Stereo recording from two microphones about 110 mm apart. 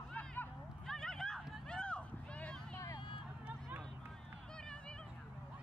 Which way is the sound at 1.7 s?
10° left (ahead or behind).